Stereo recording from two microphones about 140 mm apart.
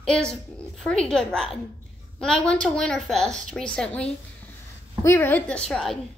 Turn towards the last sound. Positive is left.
turn(degrees=0)  # may be behind; listen again after turning